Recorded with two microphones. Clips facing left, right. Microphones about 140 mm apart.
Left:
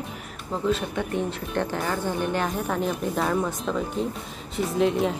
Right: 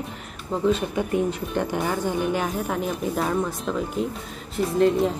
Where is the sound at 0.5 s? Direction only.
Centre (ahead or behind).